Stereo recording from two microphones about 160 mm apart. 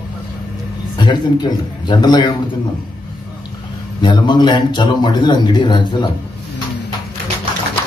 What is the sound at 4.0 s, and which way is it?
A man's voice, 30° left (ahead or behind).